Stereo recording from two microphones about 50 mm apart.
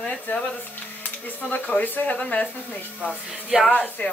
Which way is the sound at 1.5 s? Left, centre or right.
Left.